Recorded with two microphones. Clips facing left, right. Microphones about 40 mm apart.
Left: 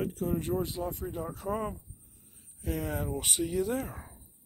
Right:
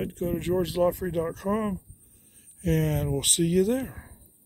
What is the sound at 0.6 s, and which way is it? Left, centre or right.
Speech, right.